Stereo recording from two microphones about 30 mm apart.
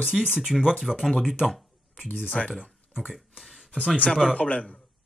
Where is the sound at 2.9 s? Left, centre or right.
Centre.